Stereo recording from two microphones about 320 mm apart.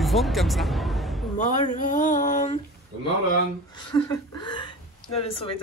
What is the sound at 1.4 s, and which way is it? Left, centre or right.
Speech, left.